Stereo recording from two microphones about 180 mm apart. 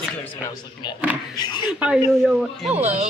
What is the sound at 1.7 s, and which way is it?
Speech, 5° right (ahead or behind).